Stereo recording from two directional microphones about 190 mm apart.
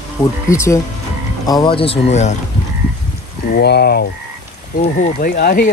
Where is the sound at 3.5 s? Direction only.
60° left (ahead or behind).